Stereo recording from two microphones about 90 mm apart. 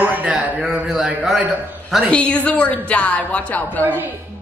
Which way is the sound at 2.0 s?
15° left (ahead or behind).